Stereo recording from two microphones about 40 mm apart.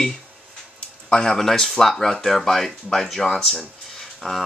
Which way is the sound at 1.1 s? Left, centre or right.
Centre.